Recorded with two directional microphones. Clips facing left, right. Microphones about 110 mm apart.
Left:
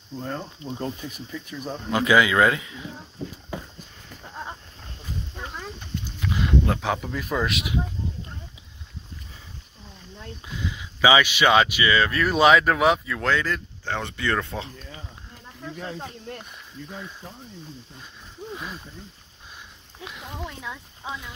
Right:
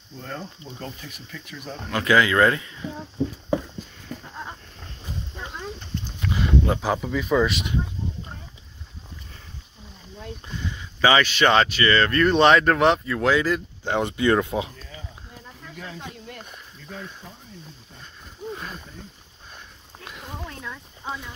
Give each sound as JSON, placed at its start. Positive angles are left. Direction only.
{"t": 0.7, "sound": "speech", "side_deg": 25}
{"t": 6.2, "sound": "speech", "side_deg": 0}
{"t": 10.5, "sound": "speech", "side_deg": 5}
{"t": 15.8, "sound": "speech", "side_deg": 30}
{"t": 20.0, "sound": "a sound", "side_deg": 0}